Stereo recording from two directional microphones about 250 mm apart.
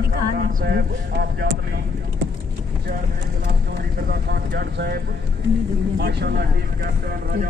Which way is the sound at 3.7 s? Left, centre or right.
Right.